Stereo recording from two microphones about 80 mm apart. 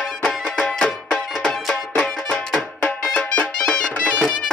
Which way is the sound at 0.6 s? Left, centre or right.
Centre.